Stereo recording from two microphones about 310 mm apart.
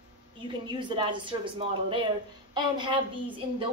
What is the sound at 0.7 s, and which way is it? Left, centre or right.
Speech, centre.